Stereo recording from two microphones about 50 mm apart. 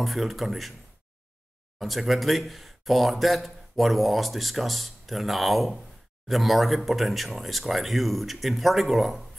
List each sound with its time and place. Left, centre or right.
0.0 s speech: centre
1.8 s speech: centre